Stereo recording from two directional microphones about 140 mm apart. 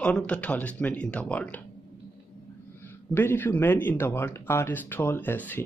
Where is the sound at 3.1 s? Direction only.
15° left (ahead or behind).